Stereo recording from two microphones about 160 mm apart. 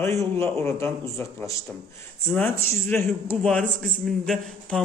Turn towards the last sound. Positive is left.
turn(degrees=0)  # may be behind; listen again after turning